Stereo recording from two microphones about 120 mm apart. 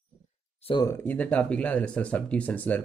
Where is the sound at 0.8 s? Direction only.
20° left (ahead or behind).